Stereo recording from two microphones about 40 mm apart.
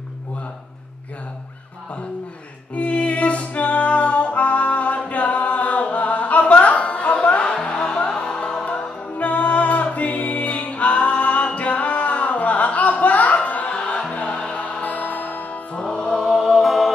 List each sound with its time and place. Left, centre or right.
2.7 s music: left
9.1 s music: left
16.2 s music: centre
16.5 s music: centre